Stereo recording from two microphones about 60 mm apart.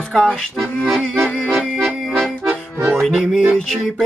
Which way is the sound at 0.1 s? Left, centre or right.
Centre.